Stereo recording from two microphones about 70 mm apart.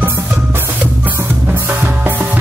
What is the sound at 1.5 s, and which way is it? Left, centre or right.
Music, right.